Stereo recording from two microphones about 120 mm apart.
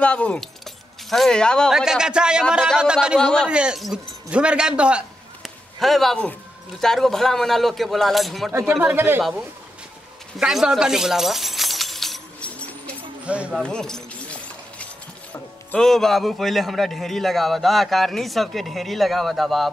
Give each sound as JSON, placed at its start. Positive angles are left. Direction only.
{"t": 0.0, "sound": "speech", "side_deg": 10}
{"t": 1.7, "sound": "speech", "side_deg": -5}
{"t": 3.2, "sound": "a man's voice", "side_deg": 5}
{"t": 3.4, "sound": "speech", "side_deg": -10}
{"t": 5.8, "sound": "a man's voice", "side_deg": 0}
{"t": 8.5, "sound": "speech", "side_deg": -20}
{"t": 10.4, "sound": "a sound", "side_deg": -5}
{"t": 13.2, "sound": "speech", "side_deg": -10}
{"t": 13.6, "sound": "a sound", "side_deg": 5}
{"t": 15.8, "sound": "a man's voice", "side_deg": 5}